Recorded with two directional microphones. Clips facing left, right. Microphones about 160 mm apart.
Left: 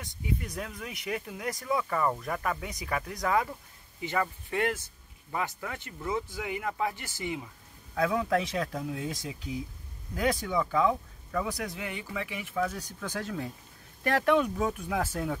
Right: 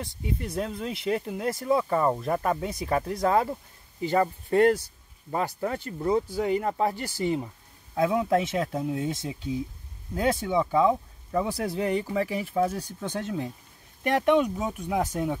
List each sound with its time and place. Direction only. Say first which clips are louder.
0.0 s speech: right 3 dB; 30° right (ahead or behind)
7.9 s speech: right 4 dB; 25° right (ahead or behind)